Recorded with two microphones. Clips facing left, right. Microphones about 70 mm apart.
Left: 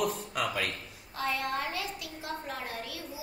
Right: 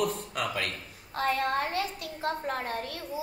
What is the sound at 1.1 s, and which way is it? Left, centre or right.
A woman's voice, right.